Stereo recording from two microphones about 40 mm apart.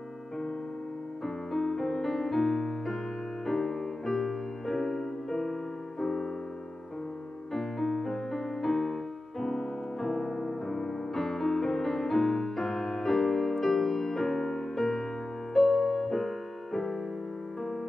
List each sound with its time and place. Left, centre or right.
1.2 s music: centre
7.5 s music: centre
10.8 s music: centre